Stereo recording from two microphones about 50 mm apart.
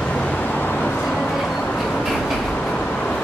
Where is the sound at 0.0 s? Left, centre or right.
Left.